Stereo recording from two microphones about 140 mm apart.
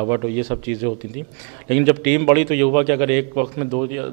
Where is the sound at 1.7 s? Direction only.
10° right (ahead or behind).